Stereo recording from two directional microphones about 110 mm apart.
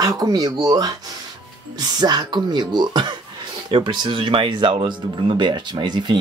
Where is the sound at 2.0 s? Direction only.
40° right (ahead or behind).